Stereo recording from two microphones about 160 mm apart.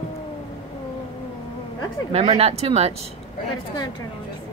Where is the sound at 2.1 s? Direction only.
40° right (ahead or behind).